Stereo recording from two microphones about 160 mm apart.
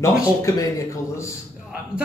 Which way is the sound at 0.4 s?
20° left (ahead or behind).